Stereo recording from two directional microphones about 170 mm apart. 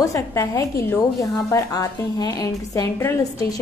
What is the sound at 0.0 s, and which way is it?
A woman's voice, 20° left (ahead or behind).